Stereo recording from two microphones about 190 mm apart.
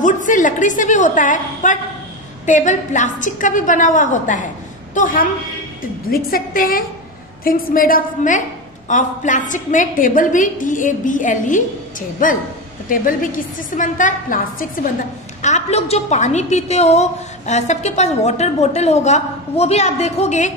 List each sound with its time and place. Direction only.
0.0 s a woman's voice: 45° left (ahead or behind)